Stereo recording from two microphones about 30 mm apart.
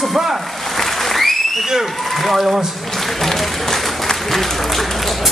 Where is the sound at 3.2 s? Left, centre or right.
Centre.